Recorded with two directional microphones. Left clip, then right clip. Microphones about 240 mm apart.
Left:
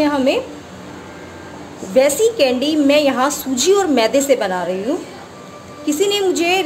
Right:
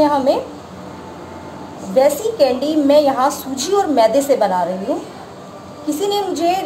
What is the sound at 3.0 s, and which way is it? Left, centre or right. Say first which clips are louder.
A woman's voice: right 2 dB; left.